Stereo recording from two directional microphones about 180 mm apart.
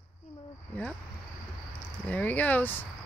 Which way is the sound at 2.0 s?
10° left (ahead or behind).